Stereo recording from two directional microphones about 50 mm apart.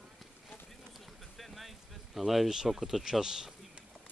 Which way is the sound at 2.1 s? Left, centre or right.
Centre.